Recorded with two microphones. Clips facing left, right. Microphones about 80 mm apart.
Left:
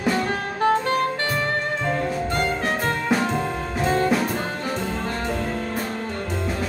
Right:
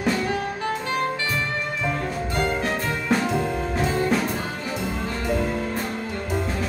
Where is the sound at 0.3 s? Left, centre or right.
Left.